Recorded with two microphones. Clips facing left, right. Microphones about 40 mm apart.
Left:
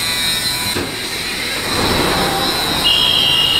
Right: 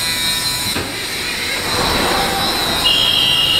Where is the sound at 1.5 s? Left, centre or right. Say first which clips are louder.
Left 1 dB; centre.